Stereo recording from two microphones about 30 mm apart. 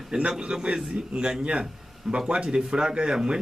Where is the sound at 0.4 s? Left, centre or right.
Right.